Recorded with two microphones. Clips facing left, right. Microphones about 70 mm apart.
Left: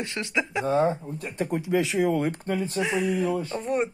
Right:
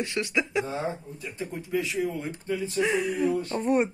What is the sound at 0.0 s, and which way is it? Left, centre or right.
Speech, centre.